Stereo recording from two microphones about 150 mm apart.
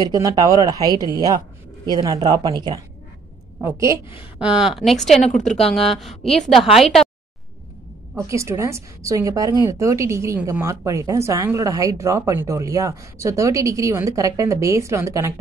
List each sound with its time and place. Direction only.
0.0 s a woman's voice: 25° right (ahead or behind)
4.4 s a woman's voice: 5° right (ahead or behind)
8.2 s a woman's voice: 20° right (ahead or behind)